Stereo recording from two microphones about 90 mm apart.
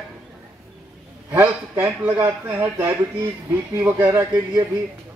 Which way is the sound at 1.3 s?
20° right (ahead or behind).